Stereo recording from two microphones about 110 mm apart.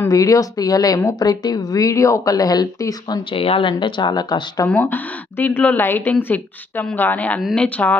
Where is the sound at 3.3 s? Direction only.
55° left (ahead or behind); by 4.6 s 40° left (ahead or behind).